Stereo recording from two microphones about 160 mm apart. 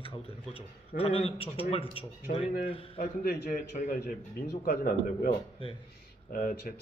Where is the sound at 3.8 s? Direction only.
50° left (ahead or behind).